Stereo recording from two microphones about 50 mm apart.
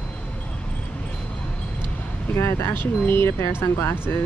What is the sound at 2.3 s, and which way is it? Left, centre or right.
Speech, left.